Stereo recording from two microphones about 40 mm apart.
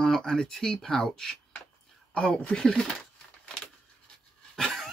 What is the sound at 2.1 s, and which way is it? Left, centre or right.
Speech, left.